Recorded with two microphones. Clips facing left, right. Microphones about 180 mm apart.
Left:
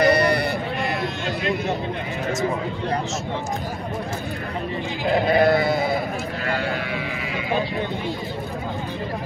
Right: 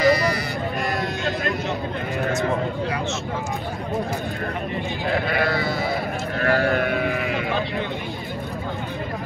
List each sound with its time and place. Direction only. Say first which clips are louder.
0.0 s sheep: left 1 dB; 60° left (ahead or behind)
5.0 s sheep: left 6 dB; 20° left (ahead or behind)
6.4 s speech: right 8 dB; 55° right (ahead or behind)